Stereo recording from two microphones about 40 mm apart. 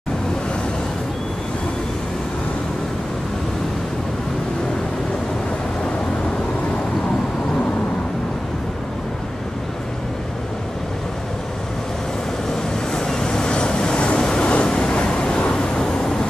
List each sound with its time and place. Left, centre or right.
12.9 s vehicle: centre